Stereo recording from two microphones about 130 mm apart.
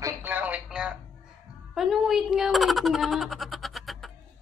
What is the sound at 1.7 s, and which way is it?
Speech, centre (ahead or behind).